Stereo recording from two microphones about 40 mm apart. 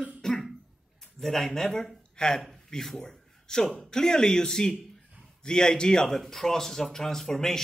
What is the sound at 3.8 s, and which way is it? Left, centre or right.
A man's voice, centre.